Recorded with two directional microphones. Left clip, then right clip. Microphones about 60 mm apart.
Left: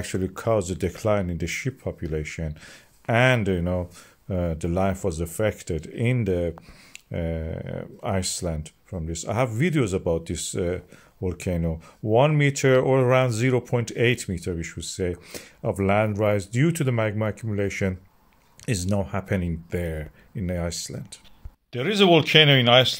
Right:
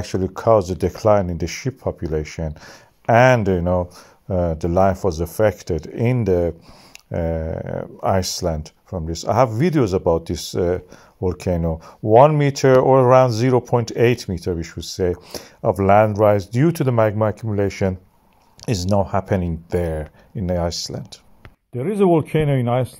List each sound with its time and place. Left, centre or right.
0.0 s speech: centre; by 19.4 s right
19.4 s speech: right